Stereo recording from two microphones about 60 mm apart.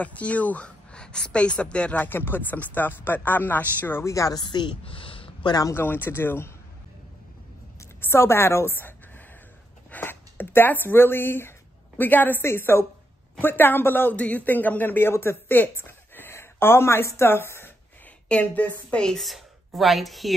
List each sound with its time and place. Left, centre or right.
0.0 s a woman's voice: left
2.0 s speech: left
4.0 s speech: left
5.8 s speech: left
8.0 s a woman's voice: left
14.1 s speech: left
18.3 s a woman's voice: left
19.2 s speech: centre